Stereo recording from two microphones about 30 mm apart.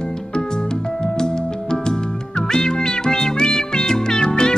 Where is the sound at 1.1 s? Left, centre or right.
Left.